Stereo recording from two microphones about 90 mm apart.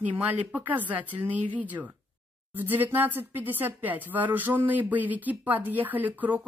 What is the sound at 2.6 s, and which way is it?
Speech, 20° right (ahead or behind).